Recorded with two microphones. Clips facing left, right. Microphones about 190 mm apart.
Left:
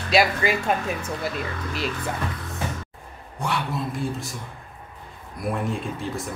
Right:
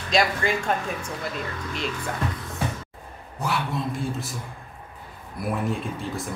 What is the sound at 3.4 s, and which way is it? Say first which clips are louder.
Speech: even; 5° right (ahead or behind).